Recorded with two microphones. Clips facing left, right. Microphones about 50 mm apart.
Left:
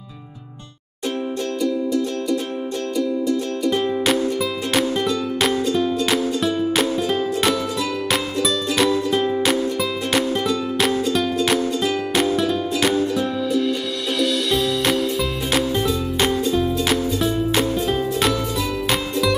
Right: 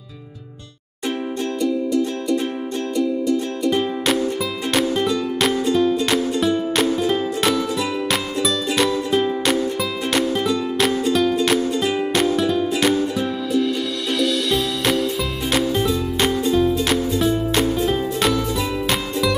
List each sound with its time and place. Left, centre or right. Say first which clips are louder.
3.0 s music: right 1 dB; centre
11.8 s music: right 1 dB; centre
12.1 s music: even; centre